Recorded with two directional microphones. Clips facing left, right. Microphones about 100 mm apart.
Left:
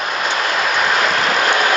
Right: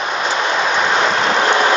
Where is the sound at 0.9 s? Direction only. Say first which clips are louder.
Right 1 dB; 25° right (ahead or behind).